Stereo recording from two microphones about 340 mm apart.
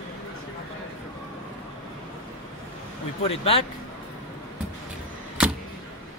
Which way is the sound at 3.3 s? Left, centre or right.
Centre.